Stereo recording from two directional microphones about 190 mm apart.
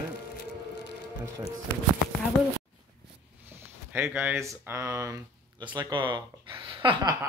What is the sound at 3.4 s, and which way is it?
Speech, 10° right (ahead or behind).